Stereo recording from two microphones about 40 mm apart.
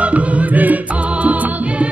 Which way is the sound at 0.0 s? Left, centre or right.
Right.